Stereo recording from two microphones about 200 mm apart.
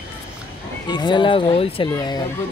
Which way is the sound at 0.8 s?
20° left (ahead or behind).